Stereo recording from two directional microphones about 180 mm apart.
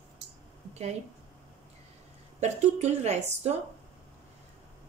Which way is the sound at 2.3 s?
40° right (ahead or behind).